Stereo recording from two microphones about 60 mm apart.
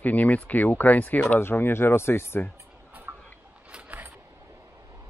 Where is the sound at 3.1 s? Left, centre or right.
Right.